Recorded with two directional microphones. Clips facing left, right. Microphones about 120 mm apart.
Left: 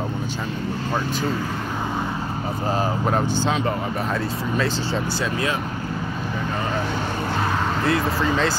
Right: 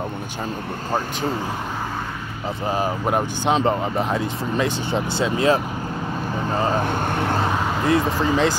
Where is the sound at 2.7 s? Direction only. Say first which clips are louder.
Right 1 dB; 15° right (ahead or behind).